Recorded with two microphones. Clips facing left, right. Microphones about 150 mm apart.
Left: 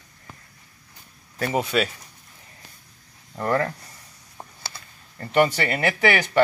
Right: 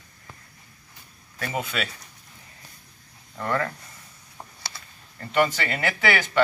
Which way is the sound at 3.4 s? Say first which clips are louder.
Left 3 dB; 35° left (ahead or behind).